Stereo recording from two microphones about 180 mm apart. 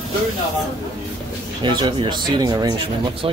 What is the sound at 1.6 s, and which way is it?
Speech, 25° right (ahead or behind).